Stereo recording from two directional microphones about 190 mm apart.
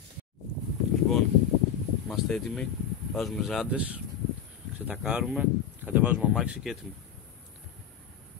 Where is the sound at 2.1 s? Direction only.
Centre (ahead or behind).